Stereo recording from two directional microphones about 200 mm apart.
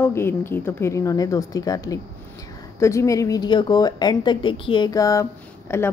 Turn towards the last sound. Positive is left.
turn(degrees=15)  # may be behind; listen again after turning